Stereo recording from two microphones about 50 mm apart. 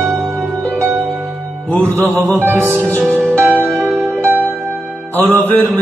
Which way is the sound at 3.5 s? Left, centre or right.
Left.